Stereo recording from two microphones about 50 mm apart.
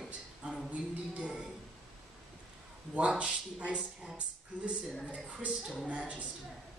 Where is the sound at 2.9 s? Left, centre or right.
Right.